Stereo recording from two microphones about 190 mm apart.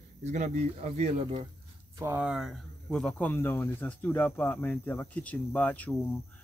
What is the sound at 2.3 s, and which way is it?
Speech, centre (ahead or behind).